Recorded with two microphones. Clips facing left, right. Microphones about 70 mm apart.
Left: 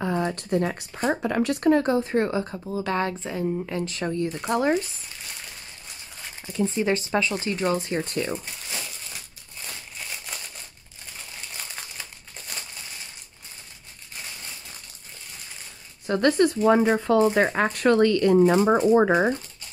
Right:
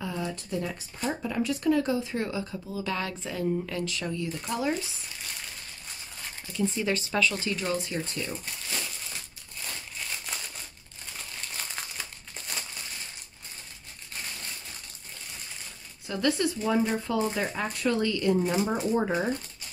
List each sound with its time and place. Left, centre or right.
0.0 s speech: left
3.8 s speech: left
6.5 s speech: left
10.3 s crumpling: centre
16.1 s speech: left
18.7 s speech: left